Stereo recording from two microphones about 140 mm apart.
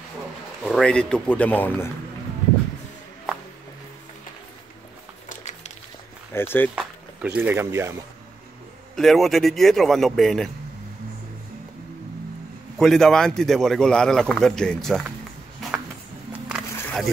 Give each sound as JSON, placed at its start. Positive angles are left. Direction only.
{"t": 0.7, "sound": "speech", "side_deg": 5}
{"t": 5.3, "sound": "music", "side_deg": 55}
{"t": 6.3, "sound": "speech", "side_deg": 15}
{"t": 6.7, "sound": "speech", "side_deg": -10}
{"t": 8.9, "sound": "a man's voice", "side_deg": 0}
{"t": 12.7, "sound": "a man's voice", "side_deg": 0}
{"t": 15.6, "sound": "a sound", "side_deg": 0}